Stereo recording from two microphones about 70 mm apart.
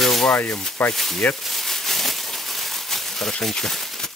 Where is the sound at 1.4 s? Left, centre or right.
Centre.